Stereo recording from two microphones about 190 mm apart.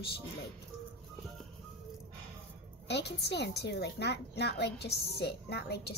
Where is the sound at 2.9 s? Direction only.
60° left (ahead or behind).